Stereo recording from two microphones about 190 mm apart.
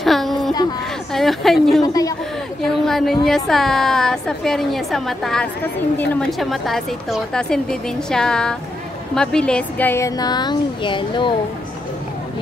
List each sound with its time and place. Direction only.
0.0 s a sound: centre (ahead or behind)
1.1 s a woman's voice: centre (ahead or behind)
1.8 s a woman's voice: 20° left (ahead or behind)
2.6 s a woman's voice: centre (ahead or behind); by 11.3 s 25° left (ahead or behind)